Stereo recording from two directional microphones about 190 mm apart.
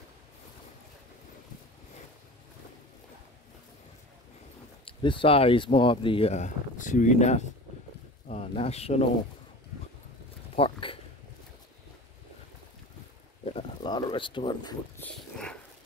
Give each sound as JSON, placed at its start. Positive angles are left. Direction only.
{"t": 4.8, "sound": "speech", "side_deg": 25}
{"t": 10.5, "sound": "speech", "side_deg": 30}
{"t": 13.6, "sound": "speech", "side_deg": 20}
{"t": 15.0, "sound": "dog", "side_deg": 5}